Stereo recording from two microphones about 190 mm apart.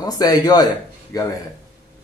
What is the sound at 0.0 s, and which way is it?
A man's voice, 20° left (ahead or behind).